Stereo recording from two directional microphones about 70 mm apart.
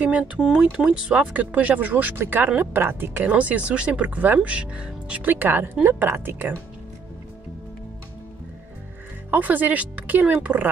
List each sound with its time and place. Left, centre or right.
0.0 s speech: centre
5.2 s speech: right
9.3 s speech: right